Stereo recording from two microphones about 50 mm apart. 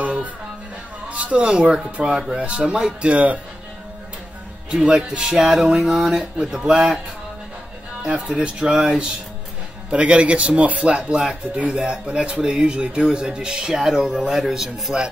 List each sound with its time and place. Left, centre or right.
0.0 s music: right
1.0 s a sound: right
2.0 s speech: centre
4.6 s speech: centre
6.0 s speech: centre
8.1 s speech: right